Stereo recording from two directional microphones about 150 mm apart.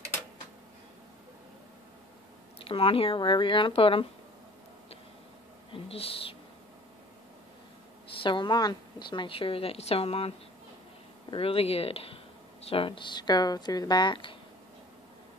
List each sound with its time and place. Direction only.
2.6 s a woman's voice: 35° left (ahead or behind)
5.7 s speech: 40° left (ahead or behind)
8.1 s a woman's voice: 35° left (ahead or behind)